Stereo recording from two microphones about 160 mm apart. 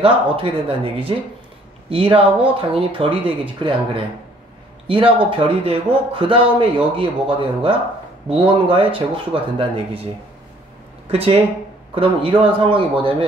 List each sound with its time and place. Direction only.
0.0 s speech: 35° right (ahead or behind)
11.1 s speech: 35° right (ahead or behind)